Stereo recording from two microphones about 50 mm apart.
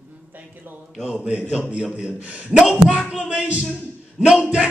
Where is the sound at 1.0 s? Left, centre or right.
Centre.